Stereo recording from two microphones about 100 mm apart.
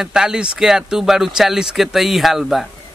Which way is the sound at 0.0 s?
5° right (ahead or behind).